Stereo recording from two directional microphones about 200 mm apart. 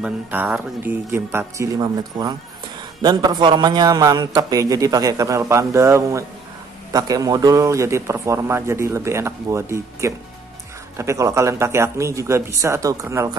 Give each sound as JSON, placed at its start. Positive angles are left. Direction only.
{"t": 0.0, "sound": "a man's voice", "side_deg": -10}